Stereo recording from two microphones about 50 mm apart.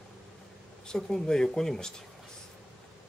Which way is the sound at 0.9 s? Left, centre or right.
Centre.